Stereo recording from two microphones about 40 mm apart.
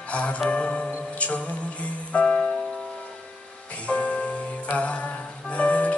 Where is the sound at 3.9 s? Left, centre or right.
Left.